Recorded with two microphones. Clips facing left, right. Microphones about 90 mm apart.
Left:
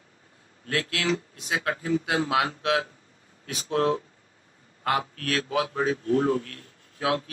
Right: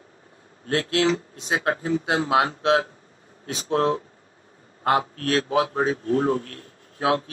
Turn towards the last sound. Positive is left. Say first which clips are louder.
# right 4 dB
turn(degrees=-35)  # may be behind; listen again after turning